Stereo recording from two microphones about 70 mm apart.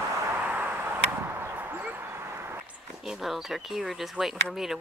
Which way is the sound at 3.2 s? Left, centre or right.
Centre.